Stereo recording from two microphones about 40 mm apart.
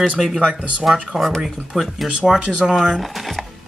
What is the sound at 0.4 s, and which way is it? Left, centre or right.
Speech, right.